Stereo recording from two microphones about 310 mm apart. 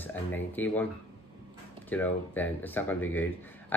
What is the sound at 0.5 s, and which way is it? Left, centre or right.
Speech, centre.